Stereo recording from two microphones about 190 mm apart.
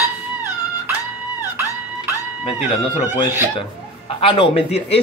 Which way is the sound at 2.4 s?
30° left (ahead or behind).